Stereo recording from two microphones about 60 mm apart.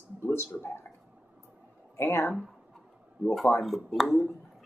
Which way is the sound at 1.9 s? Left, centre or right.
Left.